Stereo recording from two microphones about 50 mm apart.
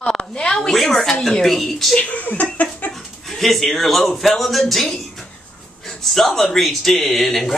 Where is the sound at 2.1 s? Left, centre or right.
Left.